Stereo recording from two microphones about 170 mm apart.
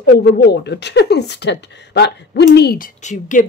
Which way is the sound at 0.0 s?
70° left (ahead or behind).